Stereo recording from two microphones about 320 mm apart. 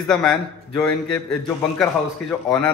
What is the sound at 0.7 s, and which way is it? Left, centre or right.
A man's voice, centre.